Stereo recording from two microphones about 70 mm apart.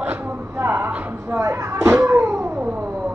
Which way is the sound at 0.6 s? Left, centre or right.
Right.